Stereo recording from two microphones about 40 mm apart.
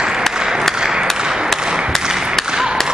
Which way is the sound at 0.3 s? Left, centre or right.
Centre.